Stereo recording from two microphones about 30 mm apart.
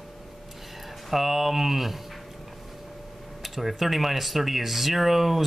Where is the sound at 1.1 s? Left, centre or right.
Centre.